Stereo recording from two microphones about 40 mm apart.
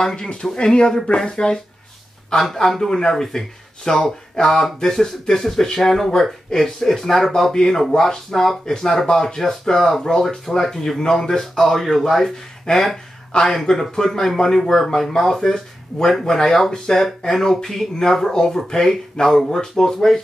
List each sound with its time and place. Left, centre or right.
0.0 s speech: centre
2.4 s speech: centre